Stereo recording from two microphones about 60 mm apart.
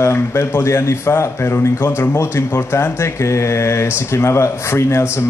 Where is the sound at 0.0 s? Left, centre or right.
Left.